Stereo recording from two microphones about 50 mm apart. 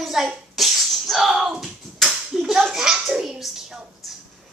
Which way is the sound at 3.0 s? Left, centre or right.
Centre.